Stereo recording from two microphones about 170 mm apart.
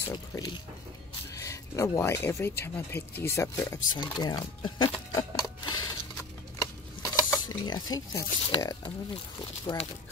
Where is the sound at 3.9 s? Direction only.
25° left (ahead or behind).